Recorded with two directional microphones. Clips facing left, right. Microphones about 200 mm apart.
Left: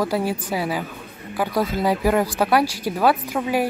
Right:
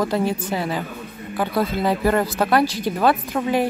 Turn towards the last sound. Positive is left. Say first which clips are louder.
# right 1 dB
turn(degrees=10)  # may be behind; listen again after turning